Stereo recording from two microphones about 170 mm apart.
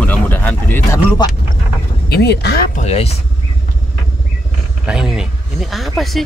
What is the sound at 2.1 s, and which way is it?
Speech, 75° left (ahead or behind).